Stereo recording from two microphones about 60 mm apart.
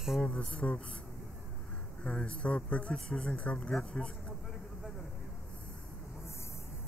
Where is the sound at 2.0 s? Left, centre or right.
Left.